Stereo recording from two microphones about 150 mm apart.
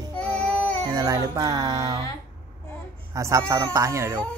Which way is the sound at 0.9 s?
20° right (ahead or behind).